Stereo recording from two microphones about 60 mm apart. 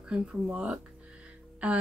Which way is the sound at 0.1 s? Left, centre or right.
Centre.